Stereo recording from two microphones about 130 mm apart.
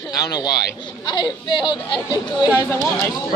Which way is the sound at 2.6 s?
20° left (ahead or behind).